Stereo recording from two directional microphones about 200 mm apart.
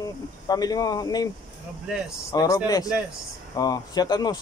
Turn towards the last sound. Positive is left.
turn(degrees=20)  # may be behind; listen again after turning